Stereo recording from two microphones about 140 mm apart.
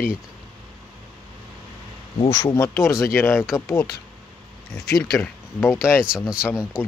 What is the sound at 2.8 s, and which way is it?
Speech, centre (ahead or behind).